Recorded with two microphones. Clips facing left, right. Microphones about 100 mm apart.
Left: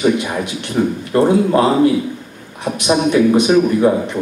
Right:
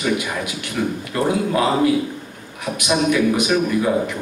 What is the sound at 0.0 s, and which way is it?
A man's voice, 30° left (ahead or behind).